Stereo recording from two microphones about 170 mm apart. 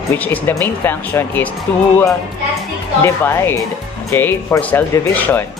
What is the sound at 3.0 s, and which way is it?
Speech, 15° left (ahead or behind).